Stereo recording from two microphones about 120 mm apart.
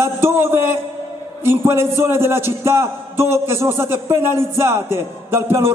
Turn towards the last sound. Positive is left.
turn(degrees=-20)  # may be behind; listen again after turning